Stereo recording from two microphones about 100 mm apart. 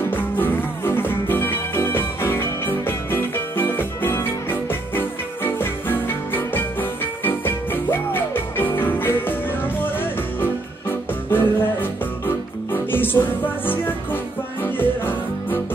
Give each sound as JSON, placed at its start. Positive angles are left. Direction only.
{"t": 0.1, "sound": "music", "side_deg": 20}
{"t": 14.6, "sound": "music", "side_deg": 20}